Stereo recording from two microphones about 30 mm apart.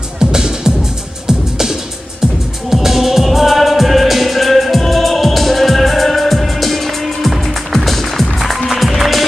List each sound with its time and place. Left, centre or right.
0.2 s music: right; by 9.2 s centre